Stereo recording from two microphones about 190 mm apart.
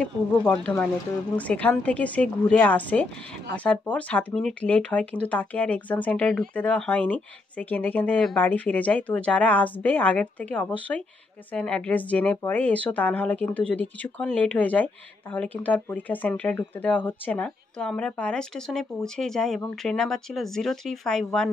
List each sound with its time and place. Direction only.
0.0 s speech: 5° left (ahead or behind)